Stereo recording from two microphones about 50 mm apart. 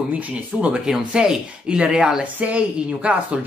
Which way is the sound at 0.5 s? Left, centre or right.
Centre.